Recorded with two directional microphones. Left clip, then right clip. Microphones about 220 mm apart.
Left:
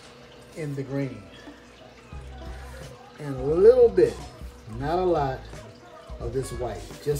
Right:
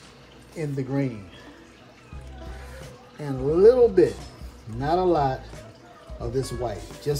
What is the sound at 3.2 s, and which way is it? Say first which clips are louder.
Speech: even; 15° right (ahead or behind).